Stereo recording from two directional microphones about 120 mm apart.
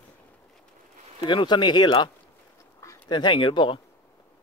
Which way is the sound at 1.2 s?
40° left (ahead or behind).